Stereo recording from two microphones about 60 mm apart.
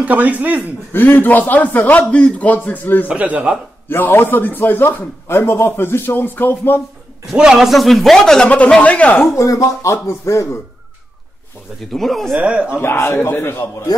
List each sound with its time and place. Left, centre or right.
0.0 s speech: right
0.9 s a man's voice: left
3.1 s speech: right
3.9 s a man's voice: left
7.3 s a man's voice: centre
8.8 s a man's voice: left
9.4 s speech: left
9.8 s a man's voice: left
11.9 s a man's voice: centre
12.4 s speech: centre
12.8 s a man's voice: left